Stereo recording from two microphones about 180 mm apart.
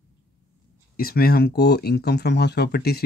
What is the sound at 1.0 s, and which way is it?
Speech, 55° left (ahead or behind).